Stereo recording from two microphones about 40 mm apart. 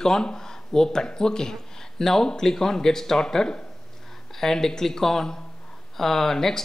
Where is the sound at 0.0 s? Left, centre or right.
Centre.